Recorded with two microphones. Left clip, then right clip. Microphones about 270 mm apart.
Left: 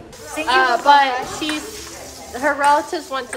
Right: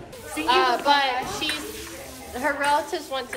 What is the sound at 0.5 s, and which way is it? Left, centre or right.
Speech, left.